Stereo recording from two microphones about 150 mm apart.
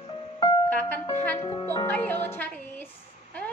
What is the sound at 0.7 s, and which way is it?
Music, 10° left (ahead or behind).